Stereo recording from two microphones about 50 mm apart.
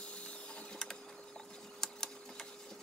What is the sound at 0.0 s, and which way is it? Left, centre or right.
Printer, left.